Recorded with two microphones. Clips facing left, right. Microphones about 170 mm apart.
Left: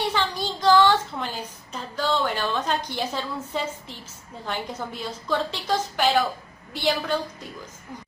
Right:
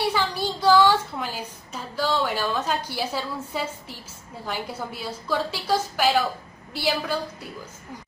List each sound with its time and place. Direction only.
0.0 s a woman's voice: 10° right (ahead or behind)